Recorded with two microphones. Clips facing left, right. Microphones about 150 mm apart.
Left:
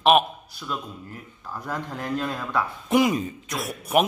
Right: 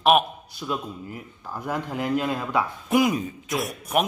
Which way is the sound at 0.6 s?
15° right (ahead or behind).